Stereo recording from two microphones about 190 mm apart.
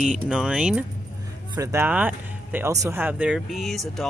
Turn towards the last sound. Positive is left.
turn(degrees=0)  # may be behind; listen again after turning